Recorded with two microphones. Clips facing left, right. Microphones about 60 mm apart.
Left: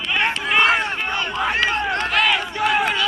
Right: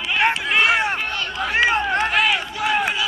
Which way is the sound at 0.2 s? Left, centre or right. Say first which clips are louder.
Even; centre.